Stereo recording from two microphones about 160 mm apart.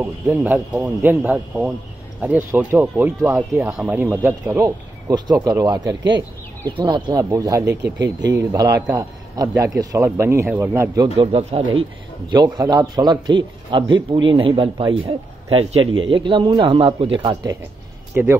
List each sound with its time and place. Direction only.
0.0 s a man's voice: 10° right (ahead or behind)
11.1 s a man's voice: 35° right (ahead or behind)
18.1 s speech: 15° right (ahead or behind)